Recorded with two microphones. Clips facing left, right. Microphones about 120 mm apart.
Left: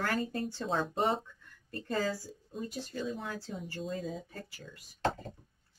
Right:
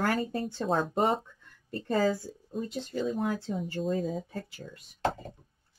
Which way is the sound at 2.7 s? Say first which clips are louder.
Right 7 dB; 20° right (ahead or behind).